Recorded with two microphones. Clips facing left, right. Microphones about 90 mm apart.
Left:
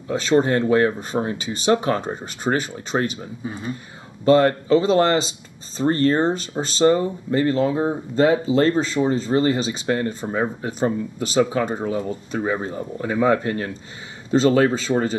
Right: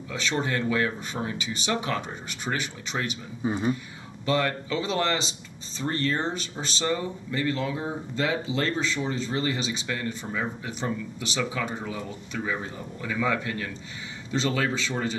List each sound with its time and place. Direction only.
0.1 s speech: 40° left (ahead or behind)
3.4 s speech: 25° right (ahead or behind)
4.2 s speech: 40° left (ahead or behind)